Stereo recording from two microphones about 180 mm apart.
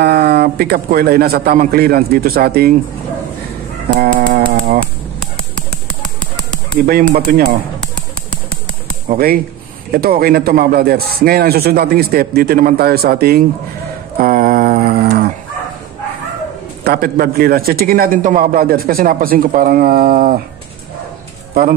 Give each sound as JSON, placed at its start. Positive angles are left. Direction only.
{"t": 0.0, "sound": "a man's voice", "side_deg": -65}
{"t": 3.9, "sound": "a man's voice", "side_deg": -50}
{"t": 6.9, "sound": "a man's voice", "side_deg": -50}
{"t": 9.1, "sound": "a man's voice", "side_deg": -55}
{"t": 14.1, "sound": "a sound", "side_deg": -55}
{"t": 16.8, "sound": "a man's voice", "side_deg": -55}